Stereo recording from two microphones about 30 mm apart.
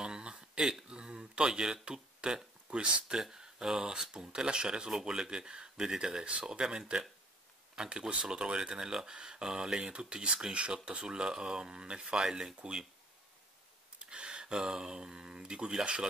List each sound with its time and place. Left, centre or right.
0.0 s a sound: right
0.8 s speech: right
3.2 s speech: centre
12.2 s speech: centre
13.9 s speech: right